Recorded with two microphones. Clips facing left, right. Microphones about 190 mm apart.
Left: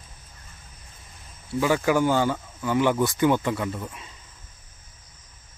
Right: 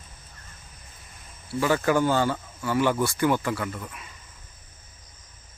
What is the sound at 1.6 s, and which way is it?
Speech, 10° left (ahead or behind).